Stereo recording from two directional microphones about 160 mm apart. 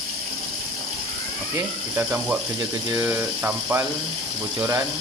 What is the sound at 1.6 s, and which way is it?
Mechanisms, 15° right (ahead or behind).